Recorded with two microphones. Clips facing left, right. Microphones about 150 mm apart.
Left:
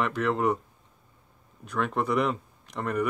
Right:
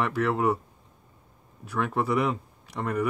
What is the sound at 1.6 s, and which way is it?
Speech, 5° right (ahead or behind).